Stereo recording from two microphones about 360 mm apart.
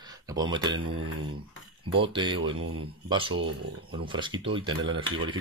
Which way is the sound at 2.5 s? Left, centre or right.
Right.